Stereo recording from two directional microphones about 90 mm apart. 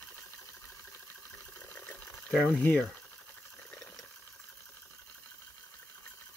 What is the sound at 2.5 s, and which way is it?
Speech, 20° left (ahead or behind).